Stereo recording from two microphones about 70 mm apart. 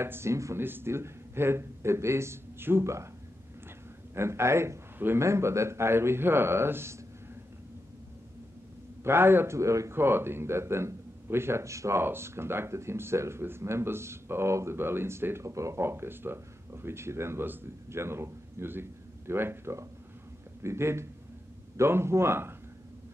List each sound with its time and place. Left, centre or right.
0.0 s speech: right
4.1 s speech: right
5.2 s speech: right
9.0 s speech: right
9.6 s speech: right
12.0 s speech: right